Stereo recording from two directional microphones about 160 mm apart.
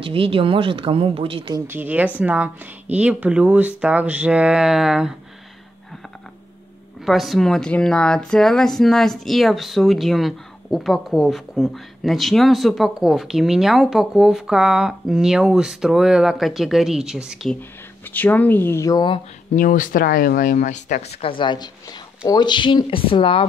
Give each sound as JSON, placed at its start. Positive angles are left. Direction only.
{"t": 0.0, "sound": "speech", "side_deg": -35}
{"t": 1.7, "sound": "speech", "side_deg": -10}
{"t": 7.1, "sound": "speech", "side_deg": 0}
{"t": 17.6, "sound": "speech", "side_deg": 10}
{"t": 19.5, "sound": "speech", "side_deg": 55}